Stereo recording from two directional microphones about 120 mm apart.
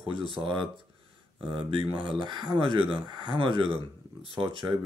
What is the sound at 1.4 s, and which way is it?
Speech, 45° right (ahead or behind).